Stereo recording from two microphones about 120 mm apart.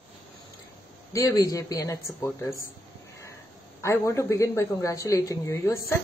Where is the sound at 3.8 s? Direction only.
25° left (ahead or behind).